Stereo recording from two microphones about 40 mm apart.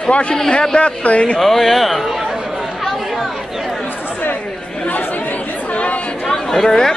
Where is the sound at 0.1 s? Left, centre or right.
Left.